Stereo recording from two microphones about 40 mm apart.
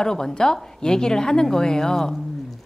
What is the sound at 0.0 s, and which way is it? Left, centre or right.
A woman's voice, centre.